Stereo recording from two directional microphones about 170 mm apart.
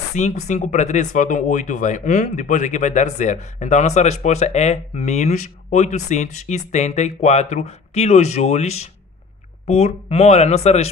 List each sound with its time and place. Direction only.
0.1 s speech: 40° left (ahead or behind)